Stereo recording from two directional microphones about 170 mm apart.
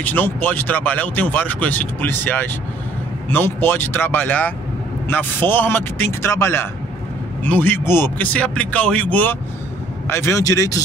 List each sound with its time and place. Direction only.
0.0 s speech: 10° left (ahead or behind)